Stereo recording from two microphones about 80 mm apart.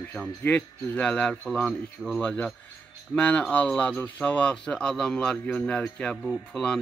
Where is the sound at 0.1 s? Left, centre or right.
Centre.